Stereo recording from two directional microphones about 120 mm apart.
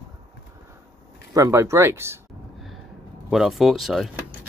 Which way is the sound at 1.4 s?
25° right (ahead or behind).